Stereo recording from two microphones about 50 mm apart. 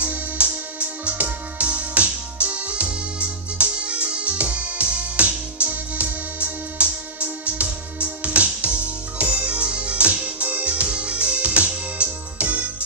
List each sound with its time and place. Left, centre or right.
0.0 s music: right